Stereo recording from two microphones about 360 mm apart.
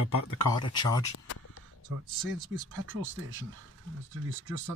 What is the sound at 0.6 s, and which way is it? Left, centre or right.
Speech, centre.